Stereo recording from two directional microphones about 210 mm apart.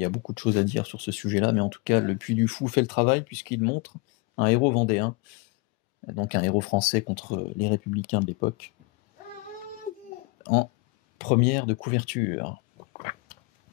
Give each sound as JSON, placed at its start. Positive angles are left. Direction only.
{"t": 0.0, "sound": "speech", "side_deg": 40}
{"t": 10.4, "sound": "speech", "side_deg": 40}
{"t": 12.9, "sound": "biting", "side_deg": 35}